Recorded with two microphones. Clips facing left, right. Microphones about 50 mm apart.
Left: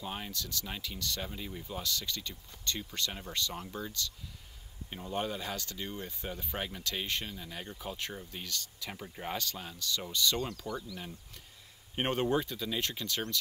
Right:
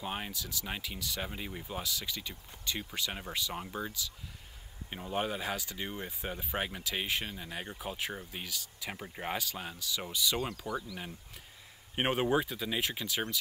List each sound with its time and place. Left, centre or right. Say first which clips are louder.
0.0 s speech: right 2 dB; centre
0.3 s speech: right 1 dB; centre
1.3 s speech: right 1 dB; right
3.3 s speech: even; centre